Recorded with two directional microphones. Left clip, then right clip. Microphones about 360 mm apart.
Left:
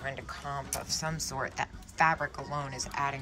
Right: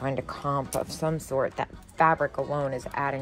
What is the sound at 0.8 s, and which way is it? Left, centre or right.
Speech, centre.